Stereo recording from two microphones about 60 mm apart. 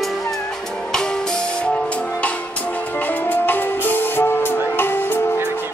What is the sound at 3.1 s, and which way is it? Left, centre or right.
Music, left.